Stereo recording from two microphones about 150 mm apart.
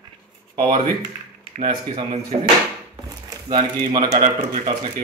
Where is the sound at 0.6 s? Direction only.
35° right (ahead or behind).